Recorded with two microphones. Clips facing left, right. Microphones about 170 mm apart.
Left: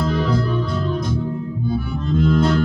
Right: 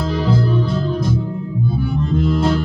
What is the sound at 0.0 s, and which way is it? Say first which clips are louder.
Music: right 1 dB; 30° right (ahead or behind).